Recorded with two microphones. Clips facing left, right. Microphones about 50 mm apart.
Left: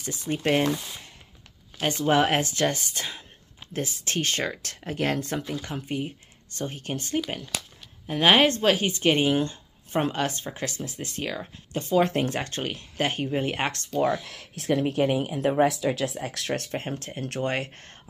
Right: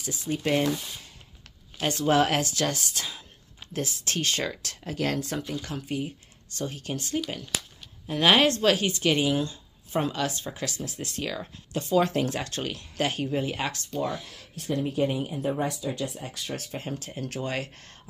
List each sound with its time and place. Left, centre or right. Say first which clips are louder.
0.0 s speech: left 2 dB; left
1.8 s speech: left 1 dB; left
13.4 s speech: left 2 dB; left
13.9 s speech: left 8 dB; left
16.7 s speech: left 3 dB; left